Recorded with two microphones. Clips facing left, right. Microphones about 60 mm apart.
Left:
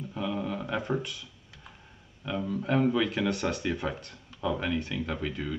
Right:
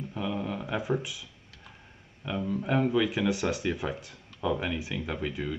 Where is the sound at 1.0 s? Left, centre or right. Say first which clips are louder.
Even; centre.